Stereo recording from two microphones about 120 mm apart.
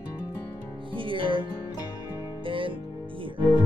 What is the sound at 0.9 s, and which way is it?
Music, 45° right (ahead or behind).